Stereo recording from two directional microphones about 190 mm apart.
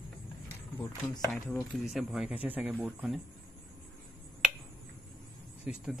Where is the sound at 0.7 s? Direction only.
15° left (ahead or behind).